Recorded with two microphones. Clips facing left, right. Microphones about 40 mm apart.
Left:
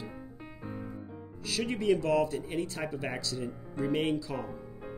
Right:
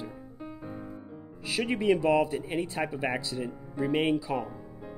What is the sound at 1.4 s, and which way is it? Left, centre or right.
Speech, centre.